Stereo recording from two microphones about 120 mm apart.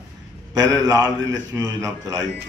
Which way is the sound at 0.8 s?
30° right (ahead or behind).